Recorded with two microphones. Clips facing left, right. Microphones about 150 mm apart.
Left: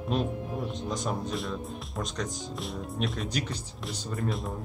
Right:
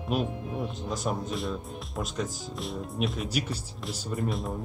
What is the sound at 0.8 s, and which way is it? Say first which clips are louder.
A man's voice: right 1 dB; centre (ahead or behind).